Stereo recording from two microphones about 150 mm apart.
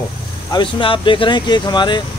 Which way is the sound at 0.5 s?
35° left (ahead or behind).